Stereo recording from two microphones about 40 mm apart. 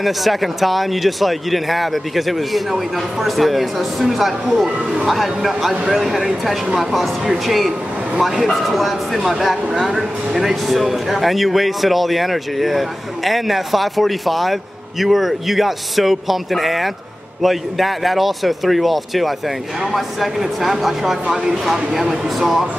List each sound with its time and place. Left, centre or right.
0.0 s speech: centre